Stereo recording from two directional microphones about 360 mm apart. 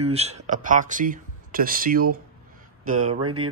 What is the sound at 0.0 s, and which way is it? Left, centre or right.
Speech, centre.